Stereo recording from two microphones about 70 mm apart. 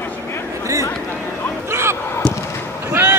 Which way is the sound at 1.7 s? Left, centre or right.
Right.